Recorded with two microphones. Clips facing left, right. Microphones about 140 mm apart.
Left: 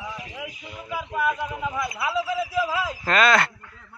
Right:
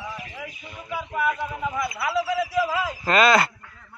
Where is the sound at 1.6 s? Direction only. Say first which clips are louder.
Right 1 dB; centre (ahead or behind).